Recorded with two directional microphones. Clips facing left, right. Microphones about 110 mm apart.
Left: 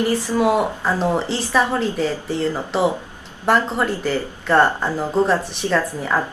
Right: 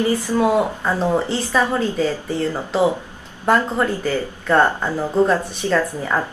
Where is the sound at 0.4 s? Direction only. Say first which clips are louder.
Even; 10° left (ahead or behind).